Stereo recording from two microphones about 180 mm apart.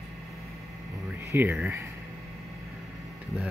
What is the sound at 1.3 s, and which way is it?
Speech, 10° right (ahead or behind).